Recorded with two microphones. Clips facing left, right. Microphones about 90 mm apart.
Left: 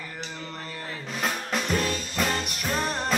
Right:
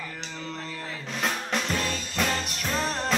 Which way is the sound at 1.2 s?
5° left (ahead or behind).